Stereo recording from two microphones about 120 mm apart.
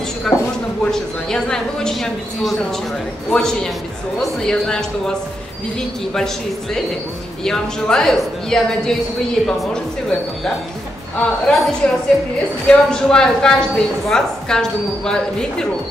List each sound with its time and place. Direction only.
0.3 s a woman's voice: centre (ahead or behind)